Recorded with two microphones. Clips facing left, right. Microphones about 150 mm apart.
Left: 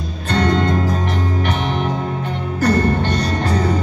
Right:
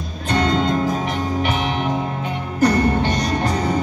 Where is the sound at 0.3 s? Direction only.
10° right (ahead or behind).